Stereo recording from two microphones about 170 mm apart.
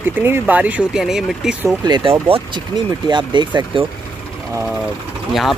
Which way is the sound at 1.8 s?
25° right (ahead or behind).